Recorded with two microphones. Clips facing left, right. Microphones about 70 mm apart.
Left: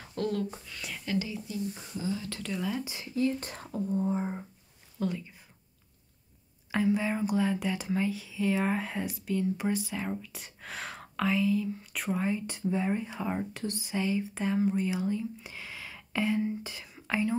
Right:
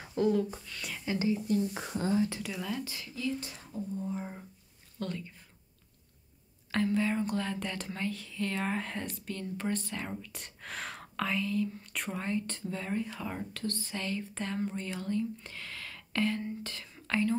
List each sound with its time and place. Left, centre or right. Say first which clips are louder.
0.0 s speech: right 3 dB; centre
0.5 s speech: even; centre
1.0 s speech: right 2 dB; right
1.7 s speech: right 2 dB; right
2.2 s speech: right 3 dB; centre
2.5 s speech: left 4 dB; centre
2.8 s speech: left 1 dB; centre
3.2 s speech: left 6 dB; left
4.2 s speech: left 7 dB; left
4.9 s speech: left 5 dB; centre
6.7 s speech: left 1 dB; centre